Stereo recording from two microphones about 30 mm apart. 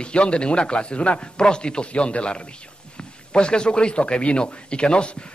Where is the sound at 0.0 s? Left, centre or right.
Left.